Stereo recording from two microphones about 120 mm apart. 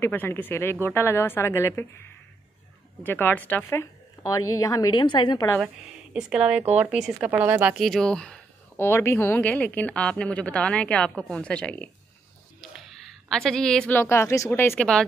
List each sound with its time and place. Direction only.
0.0 s a woman's voice: 15° left (ahead or behind)
3.0 s a woman's voice: 15° left (ahead or behind)
3.8 s a woman's voice: 30° left (ahead or behind)
6.1 s speech: 5° right (ahead or behind)
7.7 s speech: centre (ahead or behind)
8.7 s a woman's voice: 20° left (ahead or behind)
13.3 s speech: 5° left (ahead or behind)
13.9 s a woman's voice: 20° left (ahead or behind)
14.8 s speech: 5° left (ahead or behind)